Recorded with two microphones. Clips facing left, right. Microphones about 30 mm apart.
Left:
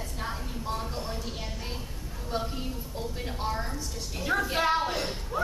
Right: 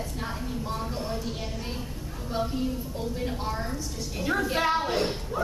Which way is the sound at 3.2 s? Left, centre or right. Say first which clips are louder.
Left 1 dB; centre.